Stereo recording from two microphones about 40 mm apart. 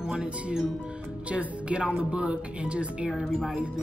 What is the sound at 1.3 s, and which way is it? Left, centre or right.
Speech, right.